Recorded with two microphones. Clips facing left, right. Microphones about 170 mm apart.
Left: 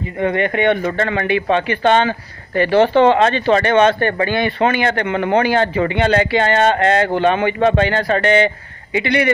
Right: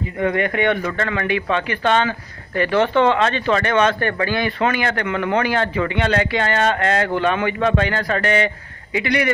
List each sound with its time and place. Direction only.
0.2 s speech: 25° left (ahead or behind)